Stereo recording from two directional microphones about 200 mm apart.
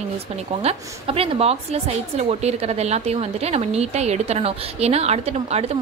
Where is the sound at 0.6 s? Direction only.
30° right (ahead or behind).